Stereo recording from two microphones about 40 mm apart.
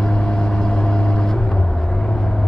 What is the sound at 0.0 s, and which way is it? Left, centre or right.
Vehicle, centre.